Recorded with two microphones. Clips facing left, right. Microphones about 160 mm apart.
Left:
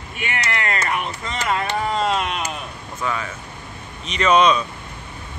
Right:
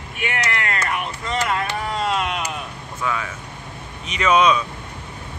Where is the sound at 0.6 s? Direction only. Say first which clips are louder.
Left 1 dB; 20° left (ahead or behind).